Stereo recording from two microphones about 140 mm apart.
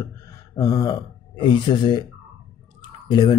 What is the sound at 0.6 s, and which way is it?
Speech, 25° left (ahead or behind).